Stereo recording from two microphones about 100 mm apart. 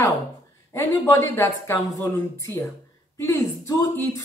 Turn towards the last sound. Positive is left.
turn(degrees=35)  # may be behind; listen again after turning